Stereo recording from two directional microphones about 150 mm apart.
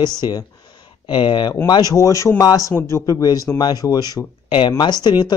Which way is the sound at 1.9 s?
20° left (ahead or behind).